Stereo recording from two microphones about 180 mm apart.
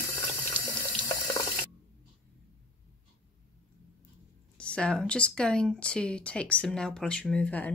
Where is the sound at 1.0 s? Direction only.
15° left (ahead or behind).